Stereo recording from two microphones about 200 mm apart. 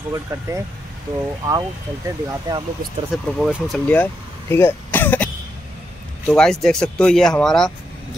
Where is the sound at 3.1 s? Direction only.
5° right (ahead or behind).